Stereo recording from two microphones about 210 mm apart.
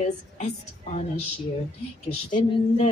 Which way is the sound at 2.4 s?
30° left (ahead or behind).